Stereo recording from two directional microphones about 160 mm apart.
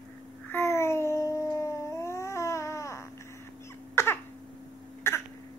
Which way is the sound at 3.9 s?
15° left (ahead or behind).